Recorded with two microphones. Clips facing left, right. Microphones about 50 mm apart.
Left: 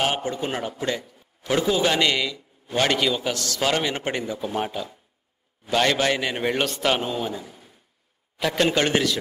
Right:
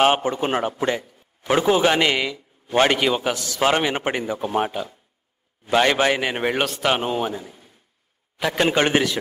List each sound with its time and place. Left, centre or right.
0.0 s a man's voice: right